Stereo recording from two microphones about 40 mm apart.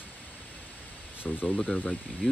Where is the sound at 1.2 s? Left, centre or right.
Left.